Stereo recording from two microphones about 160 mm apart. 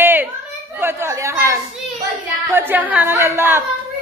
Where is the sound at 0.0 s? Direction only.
10° right (ahead or behind).